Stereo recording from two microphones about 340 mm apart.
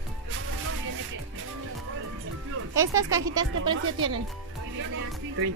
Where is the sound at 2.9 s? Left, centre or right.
Centre.